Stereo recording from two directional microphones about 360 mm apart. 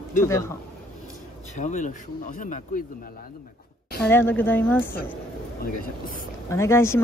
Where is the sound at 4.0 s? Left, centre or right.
Centre.